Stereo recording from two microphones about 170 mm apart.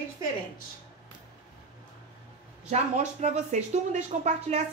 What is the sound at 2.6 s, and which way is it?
Speech, 40° right (ahead or behind).